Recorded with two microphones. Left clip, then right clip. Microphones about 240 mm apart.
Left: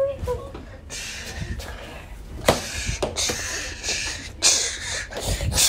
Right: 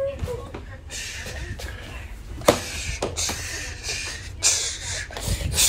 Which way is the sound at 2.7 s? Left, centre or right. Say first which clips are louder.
Left 2 dB; left.